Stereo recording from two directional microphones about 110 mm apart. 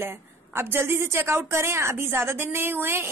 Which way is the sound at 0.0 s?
20° right (ahead or behind).